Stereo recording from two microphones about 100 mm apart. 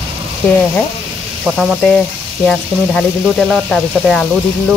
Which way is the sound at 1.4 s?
5° right (ahead or behind).